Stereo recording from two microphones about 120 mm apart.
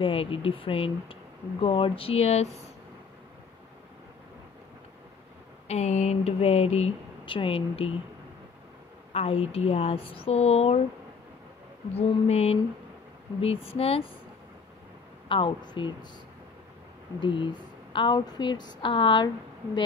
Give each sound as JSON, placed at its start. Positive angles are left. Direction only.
{"t": 0.0, "sound": "speech", "side_deg": 50}
{"t": 5.7, "sound": "speech", "side_deg": 70}
{"t": 7.2, "sound": "speech", "side_deg": 50}
{"t": 9.1, "sound": "speech", "side_deg": 55}
{"t": 11.9, "sound": "speech", "side_deg": 60}
{"t": 15.2, "sound": "a woman's voice", "side_deg": 45}
{"t": 17.2, "sound": "a woman's voice", "side_deg": 45}